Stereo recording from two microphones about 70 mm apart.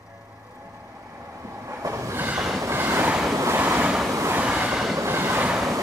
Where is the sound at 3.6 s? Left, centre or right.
Right.